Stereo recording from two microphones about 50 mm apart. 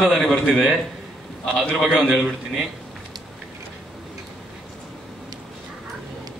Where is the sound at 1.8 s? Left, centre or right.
Centre.